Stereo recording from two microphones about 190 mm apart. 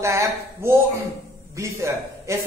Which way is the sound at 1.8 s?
15° right (ahead or behind).